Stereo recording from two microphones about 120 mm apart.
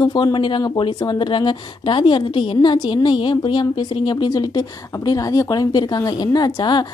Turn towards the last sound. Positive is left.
turn(degrees=35)  # may be behind; listen again after turning